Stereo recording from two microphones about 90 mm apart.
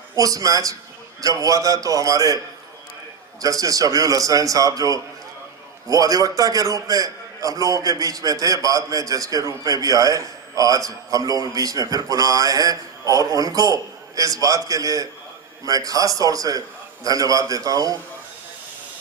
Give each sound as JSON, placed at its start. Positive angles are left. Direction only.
{"t": 0.1, "sound": "a man's voice", "side_deg": -40}